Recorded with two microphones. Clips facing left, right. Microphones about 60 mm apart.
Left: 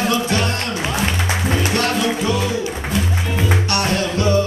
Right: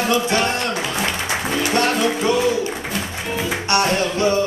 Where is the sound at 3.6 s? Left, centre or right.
Right.